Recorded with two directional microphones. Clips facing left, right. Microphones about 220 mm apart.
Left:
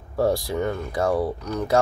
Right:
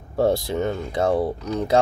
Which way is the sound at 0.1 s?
25° right (ahead or behind).